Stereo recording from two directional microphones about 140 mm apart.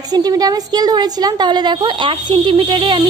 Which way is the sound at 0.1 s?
30° right (ahead or behind).